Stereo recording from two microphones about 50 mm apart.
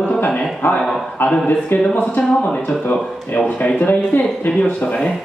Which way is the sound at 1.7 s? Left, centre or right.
Left.